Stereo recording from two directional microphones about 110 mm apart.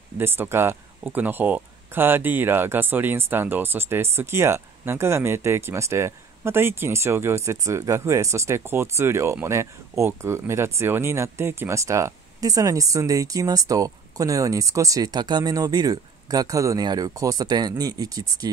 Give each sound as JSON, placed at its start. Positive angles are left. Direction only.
{"t": 0.2, "sound": "speech", "side_deg": -20}